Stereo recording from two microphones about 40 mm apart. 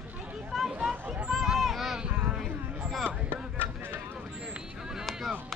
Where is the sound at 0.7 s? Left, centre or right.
Centre.